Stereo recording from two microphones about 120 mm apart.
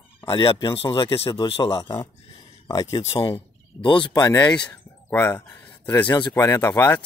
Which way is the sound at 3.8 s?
45° left (ahead or behind).